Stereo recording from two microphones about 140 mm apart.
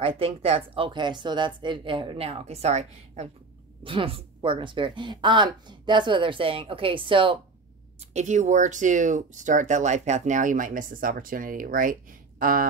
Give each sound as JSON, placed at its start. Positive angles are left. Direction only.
{"t": 0.0, "sound": "speech", "side_deg": -45}
{"t": 3.8, "sound": "speech", "side_deg": -40}
{"t": 8.0, "sound": "speech", "side_deg": -55}